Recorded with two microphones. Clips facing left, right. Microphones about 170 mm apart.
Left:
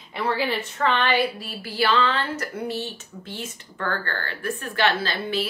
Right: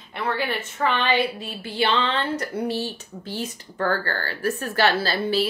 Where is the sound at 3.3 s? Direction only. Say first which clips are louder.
Right 6 dB; 35° right (ahead or behind).